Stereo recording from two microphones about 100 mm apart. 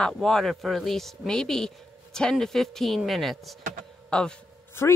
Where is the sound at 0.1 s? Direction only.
Centre (ahead or behind).